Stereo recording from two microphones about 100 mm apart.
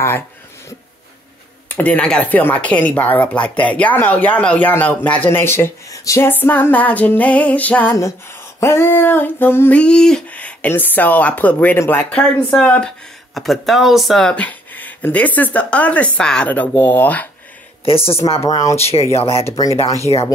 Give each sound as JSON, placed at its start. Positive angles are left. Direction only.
{"t": 1.8, "sound": "speech", "side_deg": 10}
{"t": 8.5, "sound": "female singing", "side_deg": 25}
{"t": 9.8, "sound": "speech", "side_deg": 10}
{"t": 11.8, "sound": "female singing", "side_deg": 20}
{"t": 12.1, "sound": "speech", "side_deg": 15}
{"t": 13.3, "sound": "speech", "side_deg": 0}
{"t": 14.3, "sound": "speech", "side_deg": 15}
{"t": 17.8, "sound": "speech", "side_deg": 70}
{"t": 18.5, "sound": "speech", "side_deg": 35}
{"t": 18.8, "sound": "speech", "side_deg": 90}
{"t": 19.1, "sound": "speech", "side_deg": 75}